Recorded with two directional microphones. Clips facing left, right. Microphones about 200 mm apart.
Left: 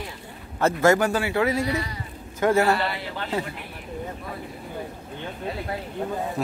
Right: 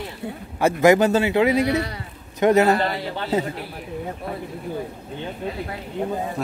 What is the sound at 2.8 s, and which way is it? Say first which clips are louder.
Speech: right 4 dB; 40° right (ahead or behind).